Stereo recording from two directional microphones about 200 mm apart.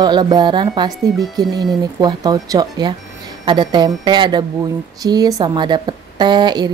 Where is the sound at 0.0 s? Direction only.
20° right (ahead or behind).